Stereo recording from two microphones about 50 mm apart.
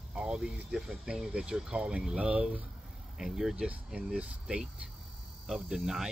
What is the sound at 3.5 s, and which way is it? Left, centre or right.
Speech, right.